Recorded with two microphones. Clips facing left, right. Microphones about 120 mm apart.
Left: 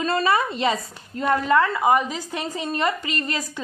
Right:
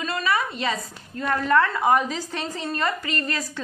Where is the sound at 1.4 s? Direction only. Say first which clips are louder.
Right 1 dB; 10° left (ahead or behind).